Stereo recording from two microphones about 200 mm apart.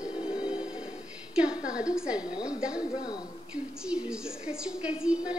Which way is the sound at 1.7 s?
5° right (ahead or behind).